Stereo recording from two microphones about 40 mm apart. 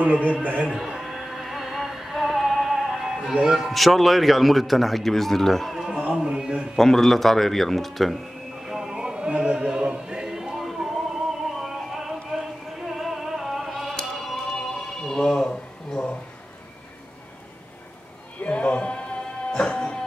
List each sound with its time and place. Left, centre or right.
0.2 s a man's voice: right
0.7 s music: centre
3.6 s speech: centre
6.1 s a sound: centre
6.8 s speech: centre
8.6 s a sound: centre
9.0 s opera: right
9.9 s music: centre
14.5 s music: centre
18.4 s music: left